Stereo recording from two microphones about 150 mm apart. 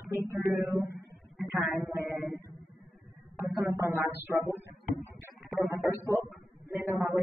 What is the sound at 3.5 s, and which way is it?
Speech, centre (ahead or behind).